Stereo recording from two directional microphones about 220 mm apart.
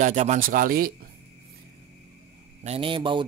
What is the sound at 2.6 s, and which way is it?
Speech, 25° right (ahead or behind).